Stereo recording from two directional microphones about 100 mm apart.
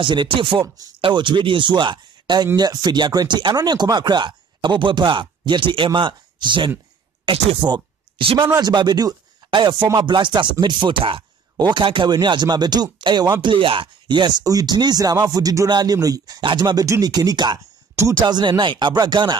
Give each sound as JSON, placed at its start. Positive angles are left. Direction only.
{"t": 0.0, "sound": "speech", "side_deg": -55}
{"t": 13.4, "sound": "speech", "side_deg": -55}